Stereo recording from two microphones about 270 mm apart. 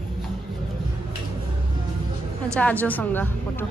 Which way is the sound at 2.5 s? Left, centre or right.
Centre.